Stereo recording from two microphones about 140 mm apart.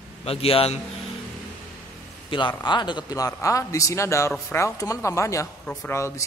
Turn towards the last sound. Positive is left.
turn(degrees=20)  # may be behind; listen again after turning